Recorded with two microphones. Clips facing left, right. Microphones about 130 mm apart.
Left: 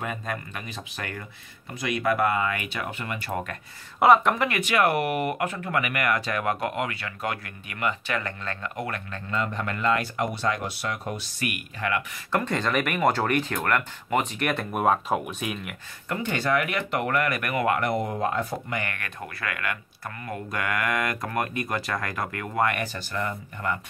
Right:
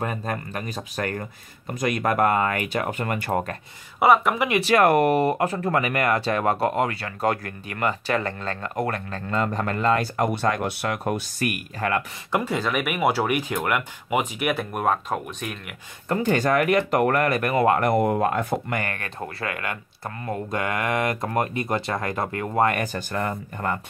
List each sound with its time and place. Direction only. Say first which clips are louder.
0.0 s speech: right 4 dB; 35° right (ahead or behind)
4.0 s speech: even; 5° right (ahead or behind)
4.6 s speech: right 5 dB; 40° right (ahead or behind)
10.3 s speech: right 4 dB; 55° right (ahead or behind)
12.3 s speech: right 1 dB; 10° right (ahead or behind)
16.1 s speech: right 5 dB; 40° right (ahead or behind)
17.8 s speech: right 6 dB; 55° right (ahead or behind)
18.8 s speech: right 3 dB; 35° right (ahead or behind)
22.8 s speech: right 4 dB; 50° right (ahead or behind)